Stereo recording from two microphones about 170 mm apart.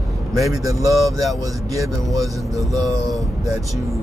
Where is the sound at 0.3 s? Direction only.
Centre (ahead or behind).